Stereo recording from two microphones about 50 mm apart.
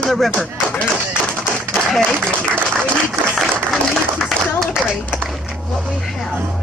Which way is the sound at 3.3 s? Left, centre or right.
Centre.